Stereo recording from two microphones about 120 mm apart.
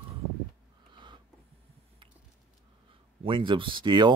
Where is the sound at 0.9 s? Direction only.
40° right (ahead or behind).